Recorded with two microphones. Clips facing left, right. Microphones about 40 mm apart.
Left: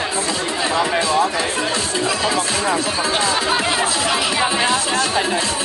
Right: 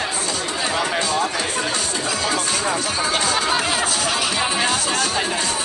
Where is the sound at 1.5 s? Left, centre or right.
Left.